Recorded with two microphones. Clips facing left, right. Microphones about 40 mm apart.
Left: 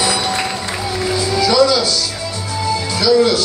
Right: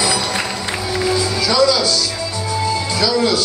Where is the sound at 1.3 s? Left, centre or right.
Left.